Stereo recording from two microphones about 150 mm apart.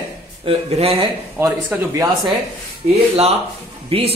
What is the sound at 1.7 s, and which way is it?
Speech, 15° right (ahead or behind).